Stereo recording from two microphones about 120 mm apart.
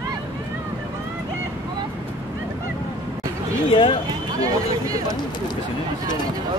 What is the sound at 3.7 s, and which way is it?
Run, 50° left (ahead or behind).